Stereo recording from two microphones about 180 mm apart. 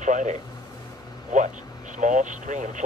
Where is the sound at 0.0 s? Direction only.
45° right (ahead or behind).